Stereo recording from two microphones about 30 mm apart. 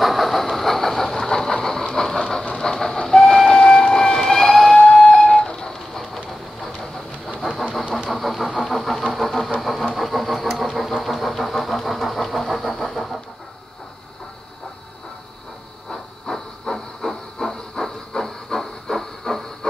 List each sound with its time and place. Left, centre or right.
0.0 s train: centre
1.1 s train: left
3.9 s vehicle: centre
4.8 s music: centre
5.3 s a sound: left
5.9 s train: centre
8.1 s vehicle: centre
15.9 s hiss: centre